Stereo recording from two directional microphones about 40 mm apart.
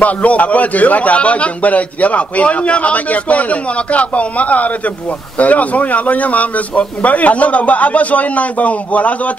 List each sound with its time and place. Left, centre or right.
0.0 s a man's voice: left